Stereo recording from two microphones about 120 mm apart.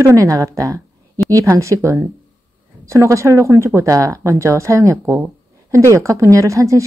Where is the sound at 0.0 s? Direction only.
25° right (ahead or behind).